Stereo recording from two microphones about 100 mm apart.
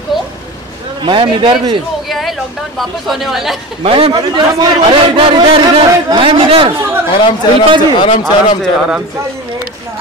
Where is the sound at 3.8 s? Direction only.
70° right (ahead or behind).